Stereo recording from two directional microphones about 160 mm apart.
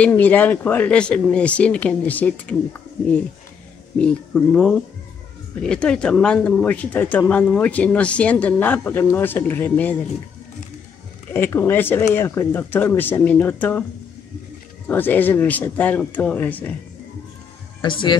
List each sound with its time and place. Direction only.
0.2 s speech: 10° left (ahead or behind)
4.0 s speech: 5° left (ahead or behind)
11.3 s speech: 15° left (ahead or behind)
14.9 s speech: 10° left (ahead or behind)
17.8 s speech: 30° left (ahead or behind)